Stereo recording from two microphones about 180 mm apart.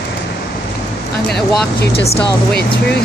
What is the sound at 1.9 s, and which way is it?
Speech, 35° left (ahead or behind).